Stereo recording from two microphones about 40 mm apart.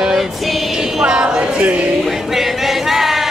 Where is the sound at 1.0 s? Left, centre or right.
Right.